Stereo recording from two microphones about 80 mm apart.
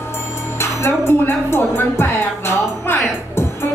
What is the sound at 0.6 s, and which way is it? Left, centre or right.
Speech, left.